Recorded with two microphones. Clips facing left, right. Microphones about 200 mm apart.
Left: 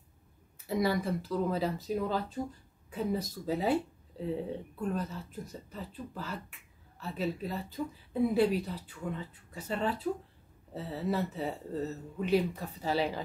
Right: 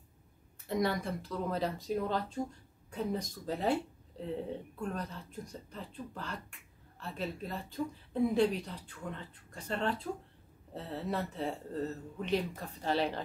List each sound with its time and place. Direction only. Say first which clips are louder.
0.7 s speech: left 3 dB; 5° left (ahead or behind)